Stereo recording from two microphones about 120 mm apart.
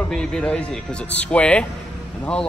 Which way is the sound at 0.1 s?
5° left (ahead or behind).